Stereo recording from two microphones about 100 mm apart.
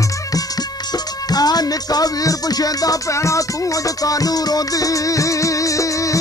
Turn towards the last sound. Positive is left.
turn(degrees=35)  # may be behind; listen again after turning